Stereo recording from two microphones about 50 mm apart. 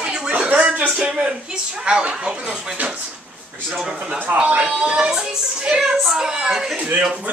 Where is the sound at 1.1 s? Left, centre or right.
Centre.